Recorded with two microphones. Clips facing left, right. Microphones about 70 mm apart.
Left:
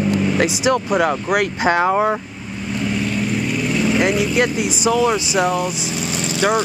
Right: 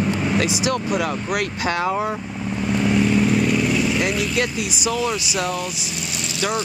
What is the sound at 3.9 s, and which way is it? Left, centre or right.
Speech, left.